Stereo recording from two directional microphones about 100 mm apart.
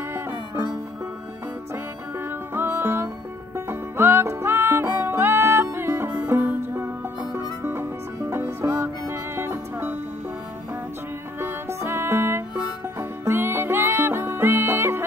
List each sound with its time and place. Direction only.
0.1 s music: 25° right (ahead or behind)
2.1 s music: 20° right (ahead or behind)
11.3 s music: 25° right (ahead or behind)